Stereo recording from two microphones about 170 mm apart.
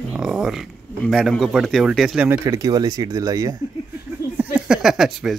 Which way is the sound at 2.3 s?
20° right (ahead or behind).